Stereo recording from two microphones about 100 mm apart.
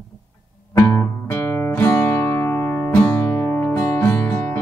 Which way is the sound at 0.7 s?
30° left (ahead or behind).